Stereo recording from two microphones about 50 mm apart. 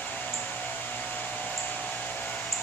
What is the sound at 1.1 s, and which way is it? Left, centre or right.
Hair dryer, left.